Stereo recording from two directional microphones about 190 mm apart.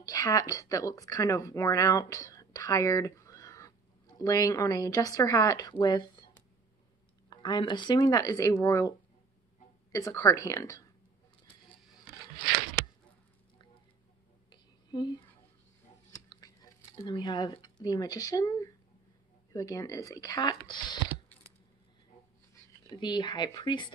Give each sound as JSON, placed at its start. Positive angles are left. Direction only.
{"t": 0.0, "sound": "speech", "side_deg": 20}
{"t": 7.2, "sound": "speech", "side_deg": 25}
{"t": 9.9, "sound": "speech", "side_deg": 15}
{"t": 14.5, "sound": "a sound", "side_deg": 20}
{"t": 19.5, "sound": "speech", "side_deg": 15}
{"t": 22.5, "sound": "speech", "side_deg": 20}